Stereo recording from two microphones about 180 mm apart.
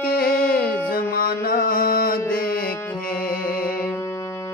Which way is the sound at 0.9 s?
55° left (ahead or behind).